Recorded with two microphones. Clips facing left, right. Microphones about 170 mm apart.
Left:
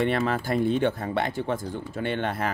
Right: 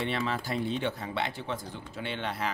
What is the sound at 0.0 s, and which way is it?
Speech, 55° left (ahead or behind).